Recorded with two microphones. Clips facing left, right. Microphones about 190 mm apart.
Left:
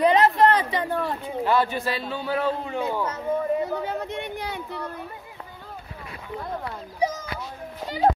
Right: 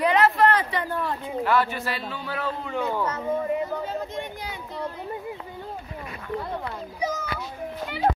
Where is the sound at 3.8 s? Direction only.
65° left (ahead or behind).